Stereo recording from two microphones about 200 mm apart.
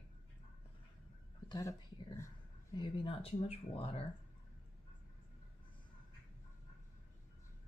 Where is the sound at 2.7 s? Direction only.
25° left (ahead or behind).